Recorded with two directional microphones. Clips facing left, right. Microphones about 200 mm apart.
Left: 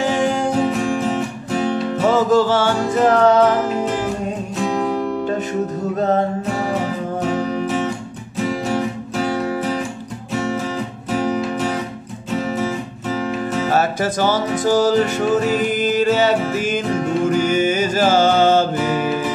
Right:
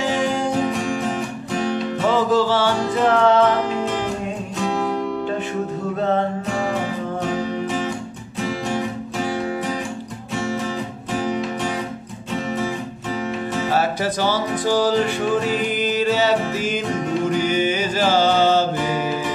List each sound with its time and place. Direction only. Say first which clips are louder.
2.0 s music: left 3 dB; 45° left (ahead or behind)
4.6 s music: left 2 dB; centre (ahead or behind)
5.9 s music: left 3 dB; 40° left (ahead or behind)
13.7 s music: left 2 dB; 45° left (ahead or behind)